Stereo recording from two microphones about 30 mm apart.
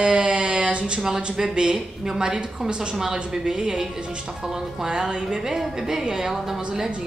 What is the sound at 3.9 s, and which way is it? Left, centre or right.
Speech, right.